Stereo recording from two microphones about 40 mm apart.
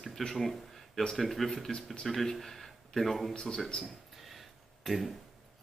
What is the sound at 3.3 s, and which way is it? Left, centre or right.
Speech, left.